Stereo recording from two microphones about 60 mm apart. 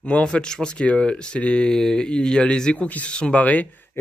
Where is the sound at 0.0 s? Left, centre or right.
Centre.